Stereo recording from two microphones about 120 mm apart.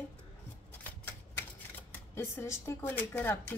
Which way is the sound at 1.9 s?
20° left (ahead or behind).